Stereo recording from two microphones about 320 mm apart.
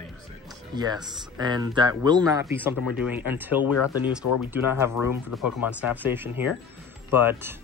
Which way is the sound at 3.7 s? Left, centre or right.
Left.